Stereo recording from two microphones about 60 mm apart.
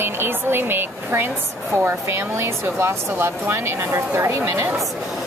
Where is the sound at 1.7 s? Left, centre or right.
Right.